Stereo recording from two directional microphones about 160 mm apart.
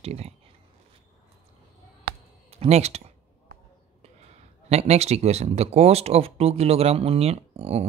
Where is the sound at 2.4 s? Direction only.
40° right (ahead or behind).